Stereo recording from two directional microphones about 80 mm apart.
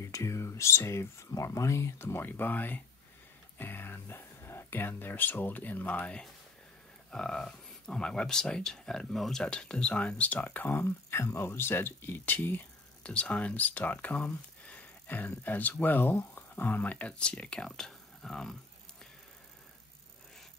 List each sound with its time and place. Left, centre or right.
0.0 s speech: left; by 18.6 s centre